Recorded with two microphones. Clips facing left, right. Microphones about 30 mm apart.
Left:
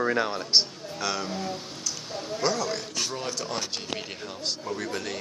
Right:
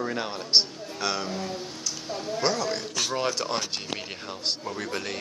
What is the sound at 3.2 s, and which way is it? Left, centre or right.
Speech, right.